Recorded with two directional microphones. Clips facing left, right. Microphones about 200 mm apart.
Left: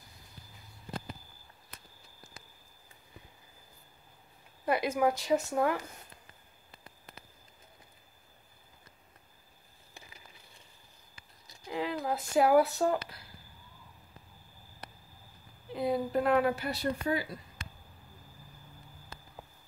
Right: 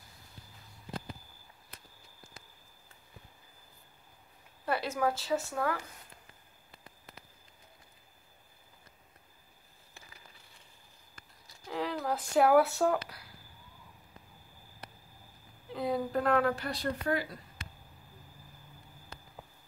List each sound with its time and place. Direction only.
4.6 s a woman's voice: 15° left (ahead or behind)
11.7 s a sound: 5° left (ahead or behind)
12.1 s speech: 5° left (ahead or behind)
15.7 s a woman's voice: centre (ahead or behind)